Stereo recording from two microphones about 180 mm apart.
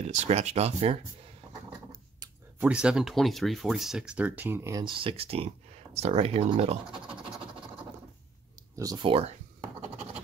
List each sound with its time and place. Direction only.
0.0 s speech: 40° right (ahead or behind)
2.6 s speech: 5° right (ahead or behind); by 7.0 s 30° right (ahead or behind)
8.7 s speech: 20° right (ahead or behind)